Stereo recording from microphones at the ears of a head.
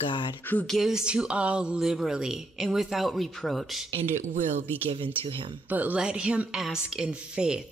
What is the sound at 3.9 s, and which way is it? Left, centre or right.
Speech, right.